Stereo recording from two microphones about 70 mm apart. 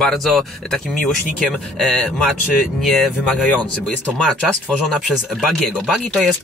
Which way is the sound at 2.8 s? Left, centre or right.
Centre.